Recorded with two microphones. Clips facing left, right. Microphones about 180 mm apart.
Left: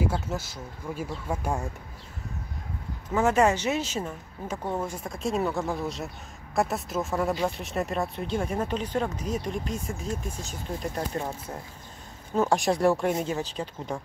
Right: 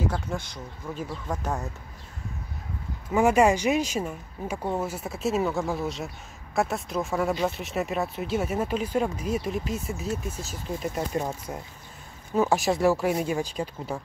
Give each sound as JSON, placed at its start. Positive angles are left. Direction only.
{"t": 0.0, "sound": "speech", "side_deg": 5}
{"t": 3.1, "sound": "speech", "side_deg": -10}
{"t": 11.1, "sound": "speech", "side_deg": -15}
{"t": 12.4, "sound": "speech", "side_deg": -5}